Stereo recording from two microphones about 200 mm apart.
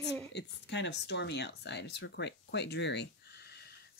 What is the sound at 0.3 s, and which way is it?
Speech, 60° left (ahead or behind).